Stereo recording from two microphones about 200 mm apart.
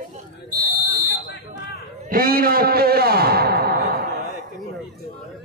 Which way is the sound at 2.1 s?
45° right (ahead or behind).